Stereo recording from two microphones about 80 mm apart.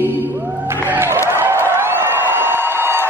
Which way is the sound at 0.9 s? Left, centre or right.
Right.